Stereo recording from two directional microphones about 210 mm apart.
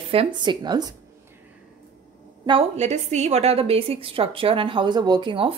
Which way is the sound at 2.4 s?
30° right (ahead or behind).